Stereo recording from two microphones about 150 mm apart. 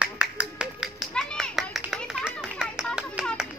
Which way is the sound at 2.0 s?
Centre (ahead or behind).